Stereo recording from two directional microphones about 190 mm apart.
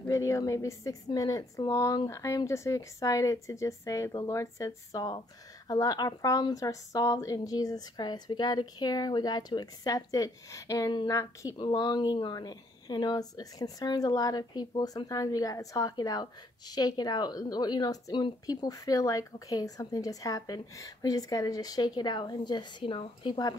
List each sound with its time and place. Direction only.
0.0 s a woman's voice: 15° left (ahead or behind)